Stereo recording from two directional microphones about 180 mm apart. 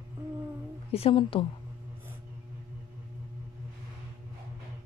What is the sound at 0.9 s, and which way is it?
Speech, 30° left (ahead or behind).